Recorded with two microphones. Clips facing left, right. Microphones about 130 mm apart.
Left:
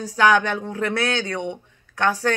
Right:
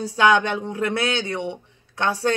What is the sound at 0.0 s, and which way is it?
Speech, 25° right (ahead or behind).